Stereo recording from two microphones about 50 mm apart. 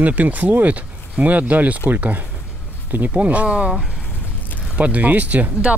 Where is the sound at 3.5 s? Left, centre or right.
Centre.